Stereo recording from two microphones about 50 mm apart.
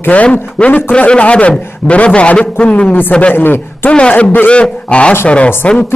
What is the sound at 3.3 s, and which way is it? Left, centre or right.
Speech, left.